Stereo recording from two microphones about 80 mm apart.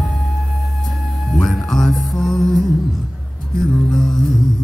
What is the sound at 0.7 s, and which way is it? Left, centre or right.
Music, centre.